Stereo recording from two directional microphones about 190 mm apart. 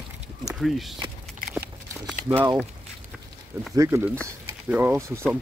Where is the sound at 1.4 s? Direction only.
45° right (ahead or behind).